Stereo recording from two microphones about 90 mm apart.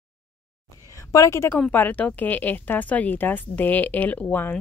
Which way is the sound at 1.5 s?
20° left (ahead or behind).